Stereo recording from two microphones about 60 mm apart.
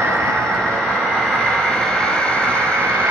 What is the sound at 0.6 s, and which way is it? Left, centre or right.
Vehicle, centre.